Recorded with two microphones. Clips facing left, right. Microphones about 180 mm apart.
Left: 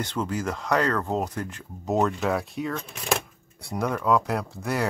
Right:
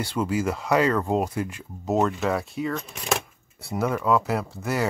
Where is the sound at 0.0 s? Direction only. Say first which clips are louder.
Right 3 dB; 10° right (ahead or behind).